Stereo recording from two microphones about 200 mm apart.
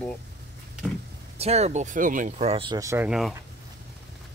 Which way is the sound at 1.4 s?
35° right (ahead or behind).